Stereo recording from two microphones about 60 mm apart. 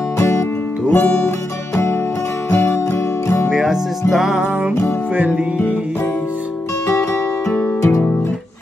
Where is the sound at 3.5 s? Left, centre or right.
Centre.